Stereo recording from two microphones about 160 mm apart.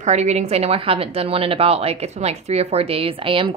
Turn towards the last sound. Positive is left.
turn(degrees=-30)  # may be behind; listen again after turning